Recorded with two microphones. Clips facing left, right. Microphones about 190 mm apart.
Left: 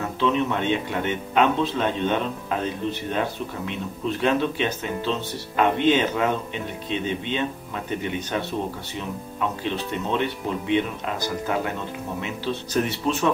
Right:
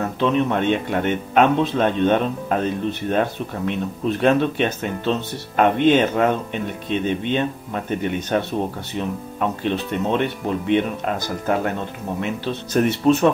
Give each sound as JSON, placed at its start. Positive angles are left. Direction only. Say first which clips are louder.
{"t": 0.2, "sound": "speech", "louder": "right 3 dB", "side_deg": -50}
{"t": 12.7, "sound": "speech", "louder": "right 8 dB", "side_deg": -55}